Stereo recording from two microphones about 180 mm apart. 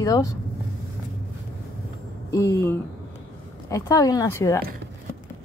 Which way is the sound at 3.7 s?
20° left (ahead or behind).